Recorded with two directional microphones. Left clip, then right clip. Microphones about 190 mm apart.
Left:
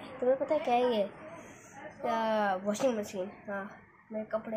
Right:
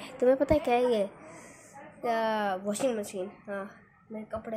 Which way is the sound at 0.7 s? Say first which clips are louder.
Right 2 dB; 30° right (ahead or behind).